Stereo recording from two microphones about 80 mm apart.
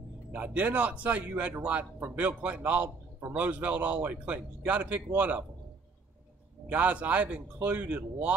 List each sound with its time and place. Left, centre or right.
0.3 s speech: centre
6.7 s speech: centre